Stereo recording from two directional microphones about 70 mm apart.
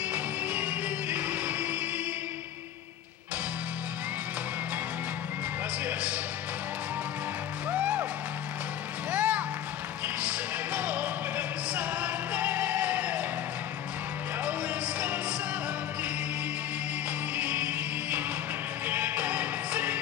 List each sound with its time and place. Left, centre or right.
0.1 s music: centre
7.7 s music: centre
9.1 s music: centre
17.4 s music: right